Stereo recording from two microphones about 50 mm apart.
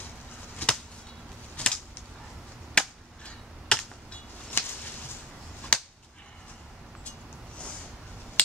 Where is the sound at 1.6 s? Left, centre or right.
Left.